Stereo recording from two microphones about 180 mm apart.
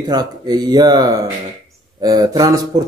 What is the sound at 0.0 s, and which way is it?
Speech, 20° right (ahead or behind).